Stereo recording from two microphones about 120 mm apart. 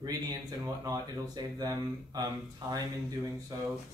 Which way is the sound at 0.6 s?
30° right (ahead or behind).